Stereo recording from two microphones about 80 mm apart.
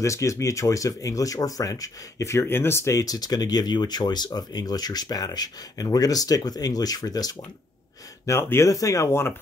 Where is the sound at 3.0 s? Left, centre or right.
Left.